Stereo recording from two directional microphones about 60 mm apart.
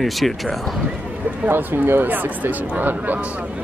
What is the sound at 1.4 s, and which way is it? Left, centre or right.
Speech, right.